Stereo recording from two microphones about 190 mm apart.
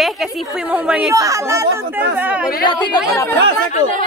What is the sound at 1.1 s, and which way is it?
A woman's voice, 15° right (ahead or behind).